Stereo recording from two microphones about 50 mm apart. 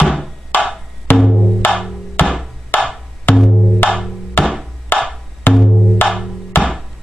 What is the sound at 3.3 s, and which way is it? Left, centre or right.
Music, centre.